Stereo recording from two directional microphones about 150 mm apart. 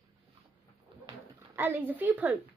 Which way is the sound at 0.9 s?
35° right (ahead or behind).